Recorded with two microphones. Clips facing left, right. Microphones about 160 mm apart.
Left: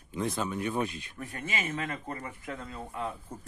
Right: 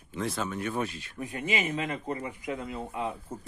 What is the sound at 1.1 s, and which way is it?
A man's voice, 15° right (ahead or behind).